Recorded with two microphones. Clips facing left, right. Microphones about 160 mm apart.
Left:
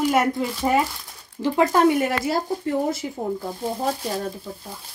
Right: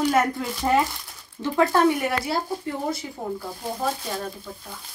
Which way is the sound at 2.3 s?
45° left (ahead or behind).